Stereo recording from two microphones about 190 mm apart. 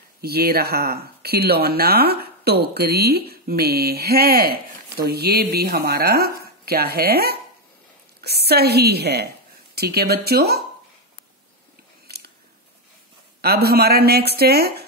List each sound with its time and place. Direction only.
0.2 s speech: 55° right (ahead or behind)
12.1 s scissors: 55° right (ahead or behind)
13.4 s speech: 55° right (ahead or behind)